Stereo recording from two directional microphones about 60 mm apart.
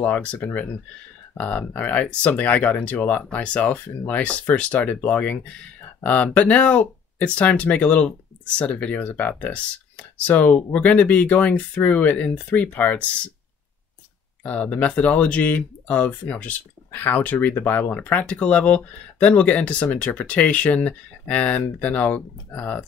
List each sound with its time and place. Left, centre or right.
0.0 s speech: left
14.4 s speech: left